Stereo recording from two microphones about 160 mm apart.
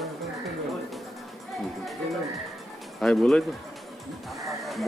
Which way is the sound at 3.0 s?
Centre (ahead or behind).